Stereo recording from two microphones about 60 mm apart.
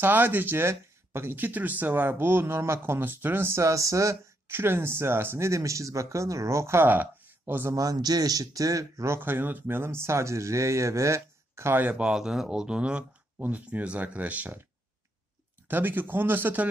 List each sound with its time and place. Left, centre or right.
0.0 s speech: right
4.5 s speech: right
5.5 s speech: right
6.9 s a sound: right
7.7 s speech: right
9.0 s speech: right
11.9 s speech: centre
13.4 s speech: right
15.7 s speech: right